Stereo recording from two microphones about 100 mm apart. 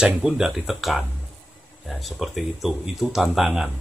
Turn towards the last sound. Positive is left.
turn(degrees=-5)  # may be behind; listen again after turning